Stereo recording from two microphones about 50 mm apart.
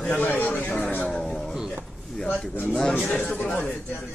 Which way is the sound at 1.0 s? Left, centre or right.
Centre.